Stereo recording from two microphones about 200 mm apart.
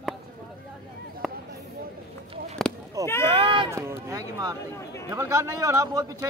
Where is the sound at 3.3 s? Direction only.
25° right (ahead or behind).